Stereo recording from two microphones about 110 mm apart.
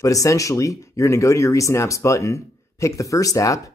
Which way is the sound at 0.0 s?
30° left (ahead or behind).